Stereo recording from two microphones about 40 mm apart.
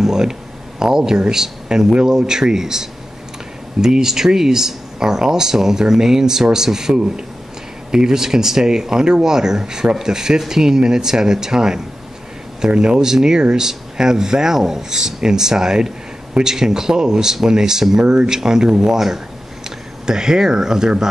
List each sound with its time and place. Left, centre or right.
0.0 s speech: centre